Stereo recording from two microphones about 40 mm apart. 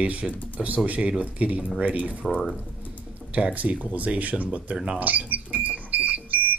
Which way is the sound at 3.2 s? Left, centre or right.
Left.